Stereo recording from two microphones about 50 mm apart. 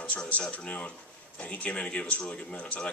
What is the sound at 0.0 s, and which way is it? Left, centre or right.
Speech, left.